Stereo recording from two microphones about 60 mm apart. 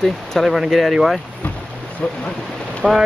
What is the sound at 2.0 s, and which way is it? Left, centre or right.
Speech, left.